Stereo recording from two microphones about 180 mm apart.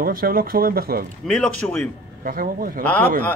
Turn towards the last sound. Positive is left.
turn(degrees=10)  # may be behind; listen again after turning